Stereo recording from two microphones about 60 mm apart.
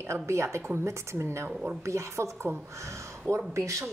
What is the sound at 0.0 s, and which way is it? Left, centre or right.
Speech, right.